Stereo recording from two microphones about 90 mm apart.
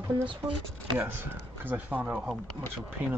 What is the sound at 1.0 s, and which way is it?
Speech, 20° right (ahead or behind).